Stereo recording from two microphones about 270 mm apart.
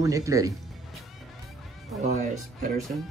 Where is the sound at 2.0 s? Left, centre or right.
Right.